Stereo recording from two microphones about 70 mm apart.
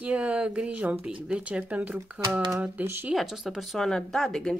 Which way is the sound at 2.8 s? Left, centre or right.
Right.